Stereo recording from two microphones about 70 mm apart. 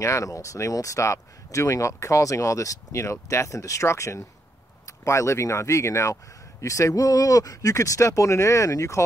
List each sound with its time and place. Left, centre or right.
0.0 s speech: left